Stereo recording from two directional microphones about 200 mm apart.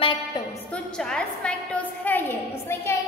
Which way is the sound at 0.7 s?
5° left (ahead or behind).